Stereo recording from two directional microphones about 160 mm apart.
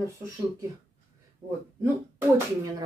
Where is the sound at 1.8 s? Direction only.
15° right (ahead or behind).